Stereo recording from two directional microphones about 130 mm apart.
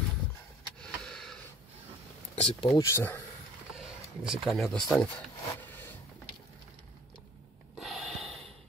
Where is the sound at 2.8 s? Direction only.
20° left (ahead or behind).